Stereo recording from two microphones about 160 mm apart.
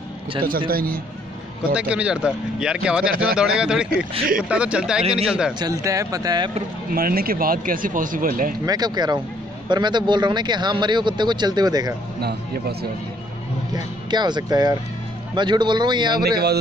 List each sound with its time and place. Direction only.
0.7 s a man's voice: 65° right (ahead or behind)
1.7 s speech: 5° right (ahead or behind)
5.6 s speech: 20° right (ahead or behind)
6.9 s speech: 65° right (ahead or behind)
8.6 s speech: 25° right (ahead or behind)
12.2 s speech: 90° right
13.7 s speech: 25° right (ahead or behind)